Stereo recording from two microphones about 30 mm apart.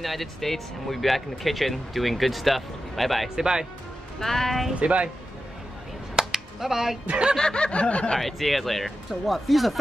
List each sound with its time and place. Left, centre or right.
0.0 s speech: centre
3.3 s speech: right
4.2 s speech: centre
4.7 s speech: right
6.1 s a sound: centre
7.3 s snicker: left
8.2 s speech: centre